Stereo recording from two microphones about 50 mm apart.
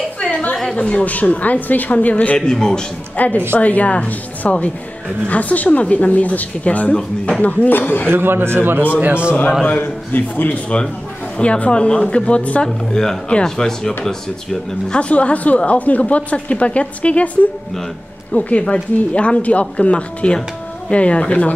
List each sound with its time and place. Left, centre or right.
0.2 s a sound: left
0.7 s speech: left
2.3 s speech: centre
3.2 s a woman's voice: left
6.9 s speech: centre
7.4 s speech: left
8.1 s a man's voice: right
9.0 s a man's voice: right
9.7 s speech: left
11.3 s a woman's voice: left
12.6 s speech: centre
15.0 s a woman's voice: left
18.3 s a woman's voice: left